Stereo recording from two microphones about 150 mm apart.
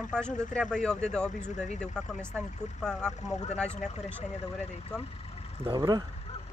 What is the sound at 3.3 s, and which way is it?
Speech, 50° left (ahead or behind).